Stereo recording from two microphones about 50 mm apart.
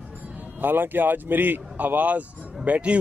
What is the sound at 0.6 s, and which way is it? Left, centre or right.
Speech, right.